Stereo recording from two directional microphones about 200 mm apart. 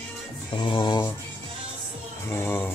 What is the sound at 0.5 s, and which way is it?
Speech, 25° left (ahead or behind).